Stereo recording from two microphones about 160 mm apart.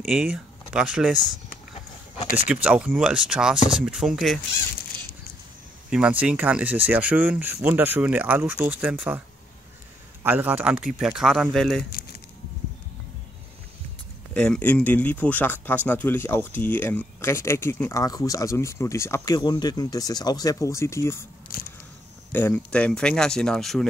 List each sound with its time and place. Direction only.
0.0 s speech: centre (ahead or behind)
2.4 s speech: 5° right (ahead or behind)
5.9 s speech: 5° right (ahead or behind)
10.2 s speech: 10° right (ahead or behind)
14.3 s speech: 10° left (ahead or behind)
22.3 s speech: 10° left (ahead or behind)